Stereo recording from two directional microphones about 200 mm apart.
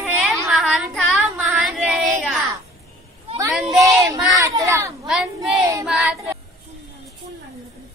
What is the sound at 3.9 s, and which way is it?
Speech, 15° right (ahead or behind).